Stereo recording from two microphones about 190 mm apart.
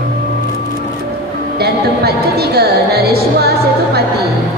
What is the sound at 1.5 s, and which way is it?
Speech, 55° right (ahead or behind).